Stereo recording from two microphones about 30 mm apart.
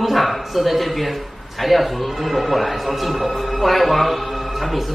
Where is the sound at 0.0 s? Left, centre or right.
Centre.